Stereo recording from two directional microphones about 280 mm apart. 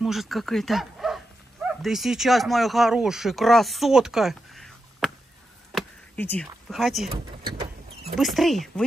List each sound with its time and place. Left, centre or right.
0.0 s speech: centre
5.7 s a sound: centre
8.2 s speech: centre